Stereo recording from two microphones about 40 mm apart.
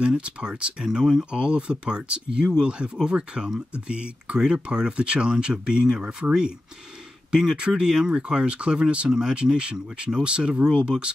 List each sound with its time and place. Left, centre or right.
0.0 s speech: right
7.5 s speech: right